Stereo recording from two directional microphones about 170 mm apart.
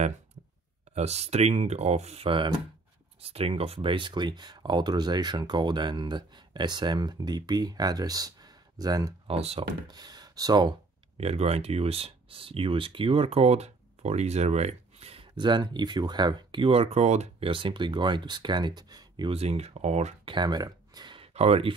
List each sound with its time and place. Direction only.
0.9 s speech: 40° right (ahead or behind); by 9.1 s 20° right (ahead or behind)
9.3 s speech: 35° right (ahead or behind)
9.8 s speech: 25° right (ahead or behind)
11.1 s speech: 35° right (ahead or behind)
20.3 s speech: 25° right (ahead or behind)